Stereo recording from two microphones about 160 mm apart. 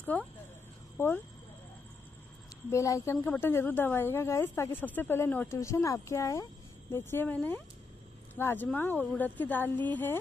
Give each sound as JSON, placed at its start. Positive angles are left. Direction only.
{"t": 0.0, "sound": "speech", "side_deg": 10}
{"t": 2.7, "sound": "speech", "side_deg": 20}